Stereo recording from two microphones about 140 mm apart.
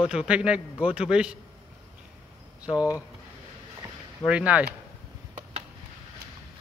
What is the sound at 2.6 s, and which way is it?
Speech, 25° left (ahead or behind).